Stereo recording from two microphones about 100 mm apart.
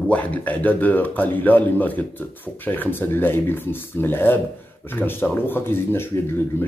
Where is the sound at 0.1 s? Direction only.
15° left (ahead or behind).